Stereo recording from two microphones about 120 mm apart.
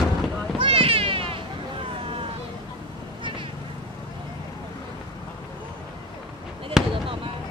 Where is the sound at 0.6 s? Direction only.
50° right (ahead or behind).